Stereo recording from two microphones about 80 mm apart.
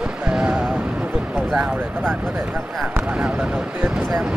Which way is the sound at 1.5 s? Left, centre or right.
Centre.